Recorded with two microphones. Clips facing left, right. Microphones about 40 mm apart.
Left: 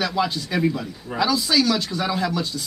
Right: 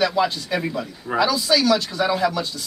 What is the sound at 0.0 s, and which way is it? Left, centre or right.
Speech, centre.